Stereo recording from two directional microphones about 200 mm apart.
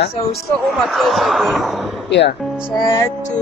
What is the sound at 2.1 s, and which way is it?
Speech, 60° left (ahead or behind).